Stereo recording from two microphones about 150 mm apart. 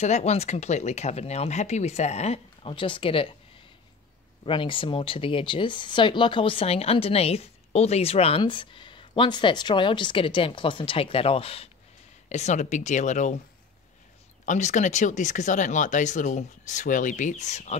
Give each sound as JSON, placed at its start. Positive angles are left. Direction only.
{"t": 0.0, "sound": "speech", "side_deg": 50}
{"t": 4.5, "sound": "speech", "side_deg": 35}
{"t": 12.3, "sound": "speech", "side_deg": 50}
{"t": 14.4, "sound": "speech", "side_deg": 55}